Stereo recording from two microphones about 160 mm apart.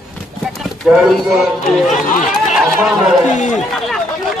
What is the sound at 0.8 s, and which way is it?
Speech, centre (ahead or behind).